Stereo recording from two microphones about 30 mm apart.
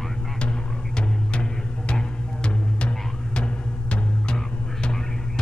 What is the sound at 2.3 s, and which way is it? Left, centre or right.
Music, left.